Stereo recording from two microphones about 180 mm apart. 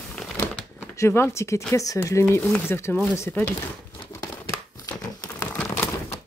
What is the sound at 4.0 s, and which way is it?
Crumpling, 20° left (ahead or behind).